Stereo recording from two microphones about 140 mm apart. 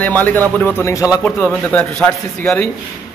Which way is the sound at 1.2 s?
10° left (ahead or behind).